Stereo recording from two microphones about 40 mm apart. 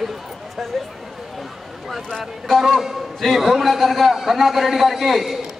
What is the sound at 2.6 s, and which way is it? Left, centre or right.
A man's voice, centre.